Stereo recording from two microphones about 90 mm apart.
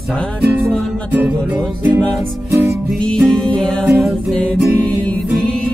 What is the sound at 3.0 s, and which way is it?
Music, 10° left (ahead or behind).